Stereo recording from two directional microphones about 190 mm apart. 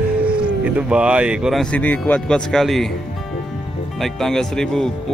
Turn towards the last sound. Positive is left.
turn(degrees=5)  # may be behind; listen again after turning